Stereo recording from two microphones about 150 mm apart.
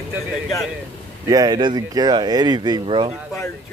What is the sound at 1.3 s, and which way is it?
Speech, 25° right (ahead or behind).